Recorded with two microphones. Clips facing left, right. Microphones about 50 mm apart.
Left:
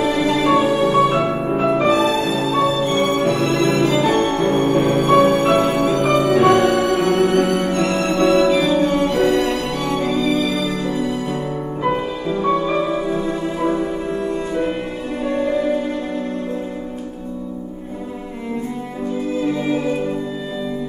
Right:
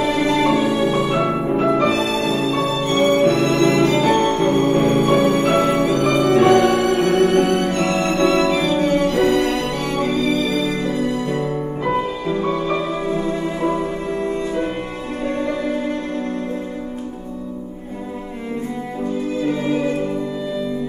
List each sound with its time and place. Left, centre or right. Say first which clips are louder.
0.0 s music: even; centre
1.7 s music: left 4 dB; centre
5.9 s music: left 1 dB; centre
6.2 s music: right 2 dB; centre
13.1 s music: even; centre